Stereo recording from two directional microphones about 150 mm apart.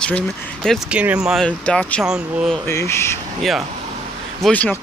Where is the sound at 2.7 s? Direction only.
20° left (ahead or behind).